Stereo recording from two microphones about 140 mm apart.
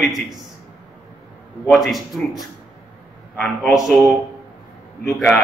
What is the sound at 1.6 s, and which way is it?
Speech, centre (ahead or behind).